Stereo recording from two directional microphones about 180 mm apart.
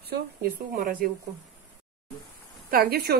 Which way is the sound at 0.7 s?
50° right (ahead or behind).